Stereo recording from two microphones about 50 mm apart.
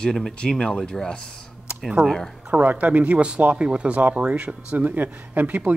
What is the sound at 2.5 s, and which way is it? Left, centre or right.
Speech, right.